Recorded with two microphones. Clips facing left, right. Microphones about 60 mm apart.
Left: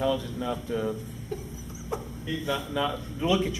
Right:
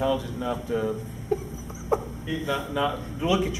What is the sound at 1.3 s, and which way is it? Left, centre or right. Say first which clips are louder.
Chicken: right 9 dB; right.